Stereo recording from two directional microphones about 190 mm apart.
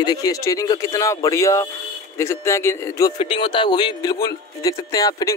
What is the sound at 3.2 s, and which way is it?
A man's voice, 25° left (ahead or behind).